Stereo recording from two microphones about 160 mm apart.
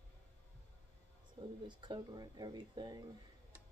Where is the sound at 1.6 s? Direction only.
30° right (ahead or behind).